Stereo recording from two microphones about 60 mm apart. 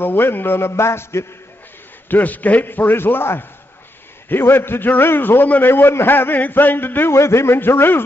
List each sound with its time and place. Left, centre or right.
0.0 s a man's voice: left
2.0 s a man's voice: left
7.2 s a man's voice: left